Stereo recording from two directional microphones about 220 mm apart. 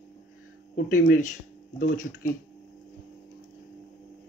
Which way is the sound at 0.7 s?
40° left (ahead or behind).